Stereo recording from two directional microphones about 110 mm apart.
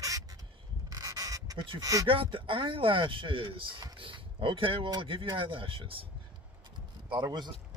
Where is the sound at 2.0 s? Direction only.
50° right (ahead or behind).